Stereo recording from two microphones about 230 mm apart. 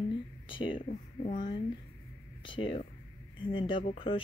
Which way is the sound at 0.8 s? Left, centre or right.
Left.